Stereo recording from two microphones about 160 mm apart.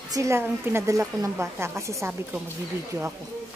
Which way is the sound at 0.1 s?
20° right (ahead or behind).